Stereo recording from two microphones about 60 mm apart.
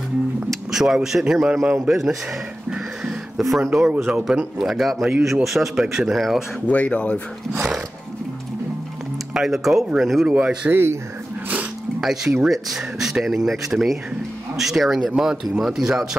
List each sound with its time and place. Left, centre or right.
0.5 s speech: centre
2.7 s music: centre
3.4 s speech: centre
6.7 s speech: left
9.3 s speech: centre
10.7 s speech: right
12.0 s speech: centre